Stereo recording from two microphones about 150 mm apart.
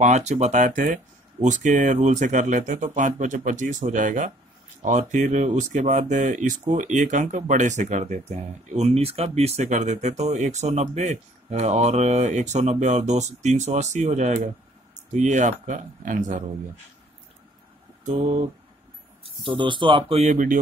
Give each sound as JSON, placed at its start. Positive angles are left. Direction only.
{"t": 0.0, "sound": "speech", "side_deg": -50}
{"t": 18.0, "sound": "speech", "side_deg": -50}
{"t": 19.4, "sound": "speech", "side_deg": -35}
{"t": 20.2, "sound": "speech", "side_deg": -60}